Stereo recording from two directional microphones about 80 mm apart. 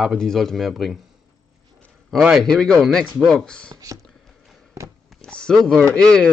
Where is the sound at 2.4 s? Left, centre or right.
Centre.